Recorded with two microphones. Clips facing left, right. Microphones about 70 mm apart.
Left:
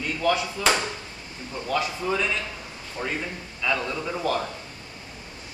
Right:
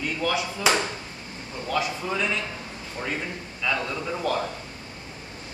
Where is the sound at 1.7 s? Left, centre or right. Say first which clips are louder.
Left 1 dB; centre.